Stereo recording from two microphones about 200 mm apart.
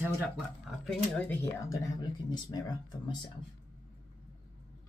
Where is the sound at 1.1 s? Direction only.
10° left (ahead or behind).